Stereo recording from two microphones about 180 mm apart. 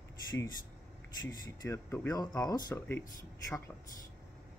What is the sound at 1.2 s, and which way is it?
Speech, 20° left (ahead or behind).